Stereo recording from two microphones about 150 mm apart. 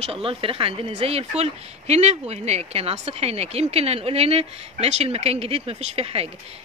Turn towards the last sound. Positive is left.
turn(degrees=-40)  # may be behind; listen again after turning